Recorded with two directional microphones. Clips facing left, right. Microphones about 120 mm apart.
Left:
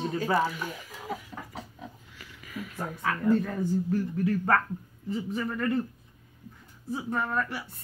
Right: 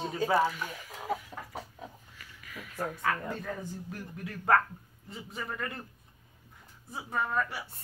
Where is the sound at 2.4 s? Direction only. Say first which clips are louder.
Left 1 dB; 5° left (ahead or behind).